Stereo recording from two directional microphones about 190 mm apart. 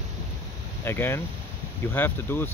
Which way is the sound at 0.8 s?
10° left (ahead or behind).